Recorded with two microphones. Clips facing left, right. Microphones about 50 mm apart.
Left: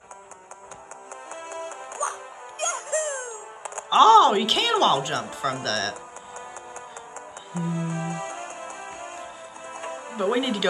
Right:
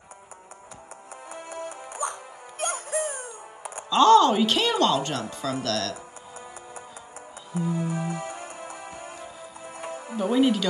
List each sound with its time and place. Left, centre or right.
1.3 s music: centre
5.4 s speech: centre
7.5 s music: centre
10.1 s speech: centre